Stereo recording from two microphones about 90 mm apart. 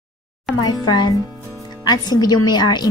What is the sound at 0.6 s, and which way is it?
A woman's voice, 55° left (ahead or behind).